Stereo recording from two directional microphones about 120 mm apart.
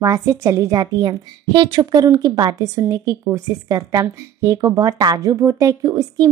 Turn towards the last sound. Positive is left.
turn(degrees=-30)  # may be behind; listen again after turning